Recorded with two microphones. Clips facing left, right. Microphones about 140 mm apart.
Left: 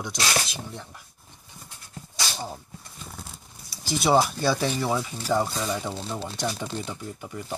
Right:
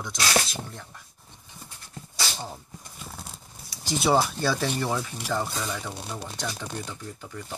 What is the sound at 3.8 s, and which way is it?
Speech, 5° left (ahead or behind).